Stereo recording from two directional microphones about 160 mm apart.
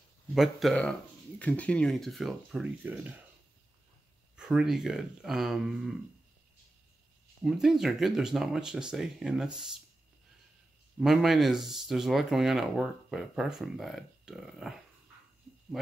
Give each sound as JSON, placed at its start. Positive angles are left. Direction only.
{"t": 0.3, "sound": "speech", "side_deg": 0}
{"t": 2.8, "sound": "speech", "side_deg": -10}
{"t": 4.4, "sound": "speech", "side_deg": -5}
{"t": 7.4, "sound": "speech", "side_deg": 0}
{"t": 11.0, "sound": "speech", "side_deg": 0}